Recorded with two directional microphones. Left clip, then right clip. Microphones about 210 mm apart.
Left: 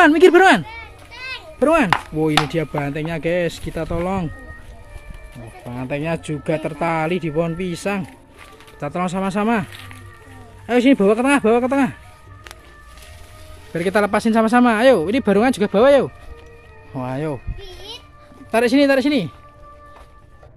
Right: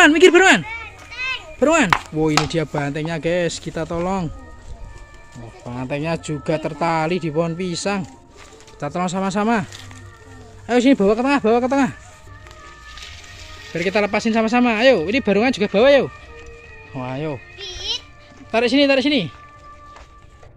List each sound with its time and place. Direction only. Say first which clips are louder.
0.0 s speech: even; 5° left (ahead or behind)
5.7 s speech: even; centre (ahead or behind)
9.7 s speech: left 1 dB; 15° right (ahead or behind)
10.7 s speech: left 1 dB; 5° left (ahead or behind)
13.7 s a child's voice: left 1 dB; 10° left (ahead or behind)